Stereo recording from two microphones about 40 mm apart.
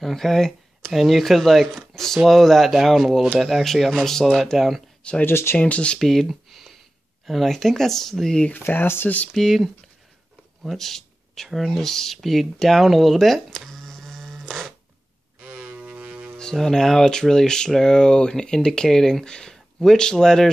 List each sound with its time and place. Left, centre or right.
0.0 s a sound: centre
0.9 s speech: centre
5.2 s speech: left
5.6 s speech: left
5.9 s speech: centre
8.5 s speech: left
9.3 s speech: centre
10.6 s a sound: centre
11.4 s speech: centre
11.7 s speech: centre
13.7 s printer: centre
15.4 s a sound: right
16.0 s hum: right
16.3 s speech: centre